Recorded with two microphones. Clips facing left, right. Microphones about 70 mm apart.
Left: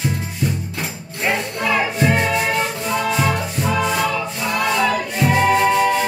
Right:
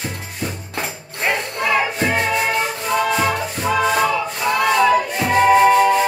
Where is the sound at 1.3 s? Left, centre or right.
Centre.